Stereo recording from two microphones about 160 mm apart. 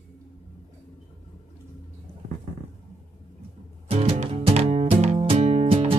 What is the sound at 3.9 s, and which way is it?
Music, 40° right (ahead or behind).